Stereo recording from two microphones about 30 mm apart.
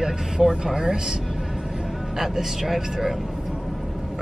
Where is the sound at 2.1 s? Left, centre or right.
Centre.